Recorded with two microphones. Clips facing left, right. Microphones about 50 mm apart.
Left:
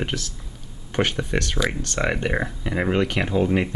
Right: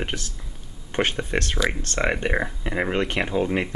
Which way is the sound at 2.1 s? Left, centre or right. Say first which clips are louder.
Even; centre.